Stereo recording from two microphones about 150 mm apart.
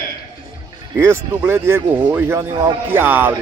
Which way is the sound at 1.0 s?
15° right (ahead or behind).